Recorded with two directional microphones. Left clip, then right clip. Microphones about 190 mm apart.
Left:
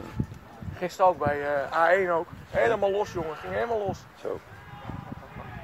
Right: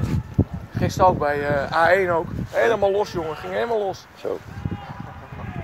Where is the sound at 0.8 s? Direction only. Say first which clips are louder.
Right 5 dB; 35° right (ahead or behind).